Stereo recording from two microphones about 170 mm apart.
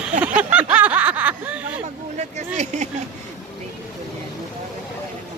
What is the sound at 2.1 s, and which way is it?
Speech, 40° right (ahead or behind).